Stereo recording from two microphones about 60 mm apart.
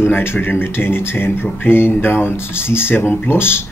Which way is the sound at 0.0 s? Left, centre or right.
Left.